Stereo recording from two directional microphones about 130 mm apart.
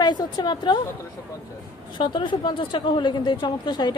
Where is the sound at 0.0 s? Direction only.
35° left (ahead or behind).